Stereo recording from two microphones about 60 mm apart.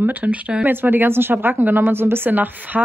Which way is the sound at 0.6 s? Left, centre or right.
Right.